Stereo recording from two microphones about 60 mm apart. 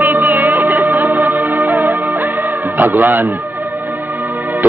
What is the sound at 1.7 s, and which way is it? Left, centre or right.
Music, right.